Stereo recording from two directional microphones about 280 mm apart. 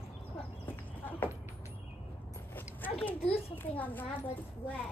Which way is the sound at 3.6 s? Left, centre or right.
Centre.